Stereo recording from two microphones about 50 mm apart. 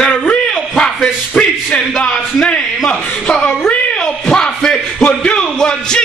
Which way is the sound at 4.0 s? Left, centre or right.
Centre.